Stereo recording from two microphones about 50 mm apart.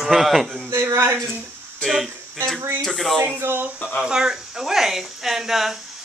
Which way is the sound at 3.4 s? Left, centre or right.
Right.